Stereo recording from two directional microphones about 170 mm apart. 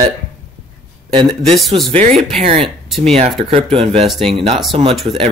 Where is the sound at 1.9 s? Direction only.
40° right (ahead or behind).